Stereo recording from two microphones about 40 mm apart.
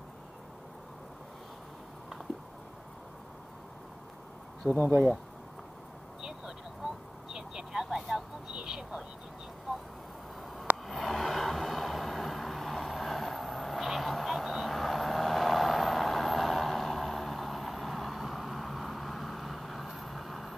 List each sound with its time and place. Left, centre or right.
4.6 s speech: centre
6.2 s vehicle: centre
10.9 s vehicle: centre